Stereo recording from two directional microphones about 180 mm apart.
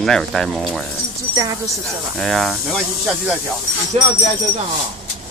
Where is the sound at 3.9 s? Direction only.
40° right (ahead or behind).